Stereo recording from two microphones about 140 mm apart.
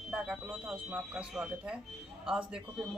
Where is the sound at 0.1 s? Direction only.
5° right (ahead or behind).